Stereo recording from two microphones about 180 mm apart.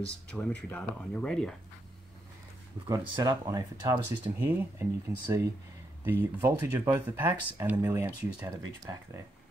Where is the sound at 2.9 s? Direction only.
20° right (ahead or behind).